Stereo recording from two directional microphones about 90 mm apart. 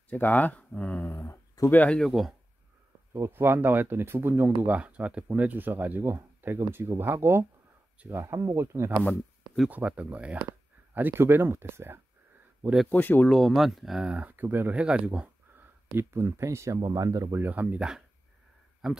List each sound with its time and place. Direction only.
0.1 s speech: 20° left (ahead or behind)
2.0 s speech: centre (ahead or behind)
3.1 s speech: 25° right (ahead or behind)
9.7 s speech: 15° right (ahead or behind)
12.9 s speech: 20° left (ahead or behind)
13.3 s speech: centre (ahead or behind)
15.9 s speech: 30° right (ahead or behind)
17.4 s speech: 20° right (ahead or behind)